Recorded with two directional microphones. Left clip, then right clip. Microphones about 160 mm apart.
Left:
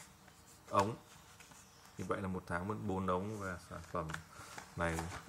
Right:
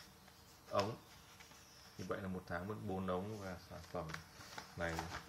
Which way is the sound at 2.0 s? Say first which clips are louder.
Left 5 dB; 40° left (ahead or behind).